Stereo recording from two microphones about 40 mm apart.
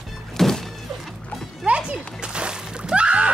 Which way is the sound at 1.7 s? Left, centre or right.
Right.